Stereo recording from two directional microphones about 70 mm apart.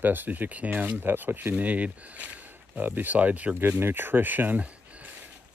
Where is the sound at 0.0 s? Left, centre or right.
Right.